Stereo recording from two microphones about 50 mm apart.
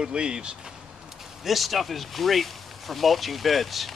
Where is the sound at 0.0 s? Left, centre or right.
Centre.